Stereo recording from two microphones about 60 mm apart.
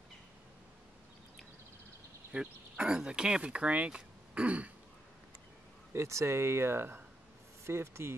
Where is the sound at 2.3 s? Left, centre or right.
Centre.